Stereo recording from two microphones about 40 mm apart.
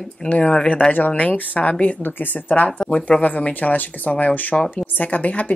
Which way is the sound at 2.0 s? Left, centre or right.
Left.